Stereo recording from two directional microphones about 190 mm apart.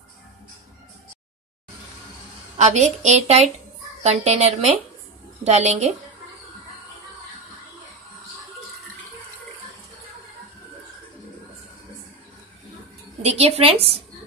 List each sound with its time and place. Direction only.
2.5 s a woman's voice: 35° right (ahead or behind)
13.2 s a woman's voice: 35° right (ahead or behind)